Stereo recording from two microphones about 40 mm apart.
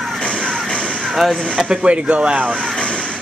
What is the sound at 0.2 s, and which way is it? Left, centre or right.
Music, left.